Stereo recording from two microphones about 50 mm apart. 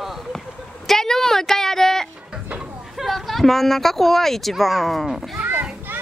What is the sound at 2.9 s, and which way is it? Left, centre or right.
Speech, centre.